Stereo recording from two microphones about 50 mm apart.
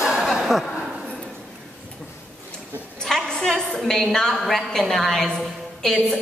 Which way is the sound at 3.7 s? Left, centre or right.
Centre.